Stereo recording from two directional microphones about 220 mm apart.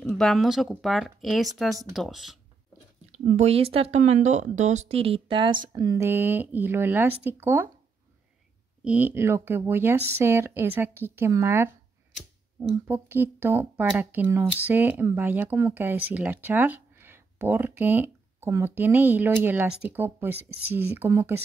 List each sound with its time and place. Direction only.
0.0 s speech: centre (ahead or behind)
3.3 s speech: 30° right (ahead or behind); by 7.7 s 10° right (ahead or behind)
8.8 s speech: 10° right (ahead or behind)